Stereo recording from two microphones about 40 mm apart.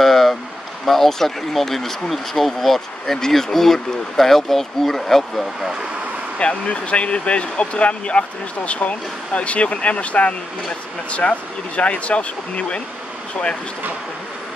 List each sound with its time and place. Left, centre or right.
0.0 s a sound: centre
0.8 s speech: centre
6.4 s speech: left